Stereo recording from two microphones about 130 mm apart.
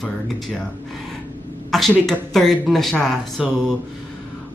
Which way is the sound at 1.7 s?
Centre (ahead or behind).